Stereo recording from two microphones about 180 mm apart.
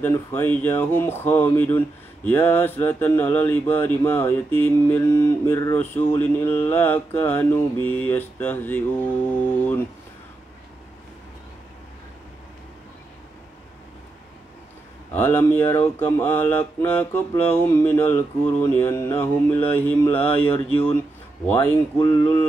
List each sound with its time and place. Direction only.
0.0 s speech: 15° left (ahead or behind)
15.1 s speech: 10° left (ahead or behind)
21.5 s a sound: 25° left (ahead or behind)